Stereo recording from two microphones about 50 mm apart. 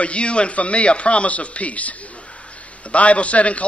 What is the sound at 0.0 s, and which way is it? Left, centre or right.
A man's voice, left.